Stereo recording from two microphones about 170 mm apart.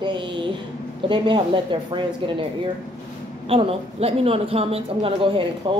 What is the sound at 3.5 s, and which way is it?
Speech, 35° right (ahead or behind).